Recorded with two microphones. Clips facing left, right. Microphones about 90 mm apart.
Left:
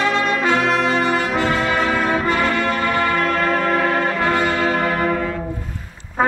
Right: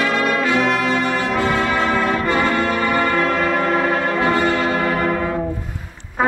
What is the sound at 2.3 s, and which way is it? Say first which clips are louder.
Music: right 1 dB; 20° right (ahead or behind).